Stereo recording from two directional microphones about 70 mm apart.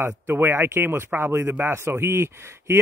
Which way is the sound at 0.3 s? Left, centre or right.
Right.